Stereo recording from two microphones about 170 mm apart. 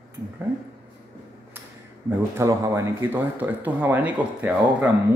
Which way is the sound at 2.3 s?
15° right (ahead or behind).